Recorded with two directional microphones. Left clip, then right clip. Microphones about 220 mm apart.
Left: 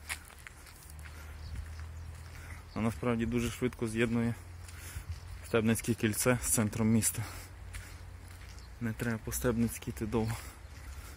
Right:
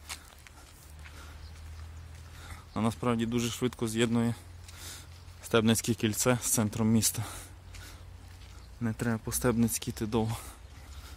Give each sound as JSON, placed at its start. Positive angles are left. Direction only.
{"t": 2.4, "sound": "speech", "side_deg": -20}
{"t": 5.5, "sound": "speech", "side_deg": -30}
{"t": 5.8, "sound": "speech", "side_deg": -15}
{"t": 8.8, "sound": "speech", "side_deg": -30}